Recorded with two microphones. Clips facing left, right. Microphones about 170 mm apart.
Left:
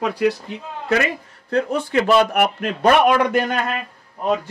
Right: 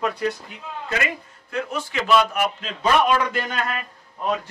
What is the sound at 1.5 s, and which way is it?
A man's voice, 60° left (ahead or behind).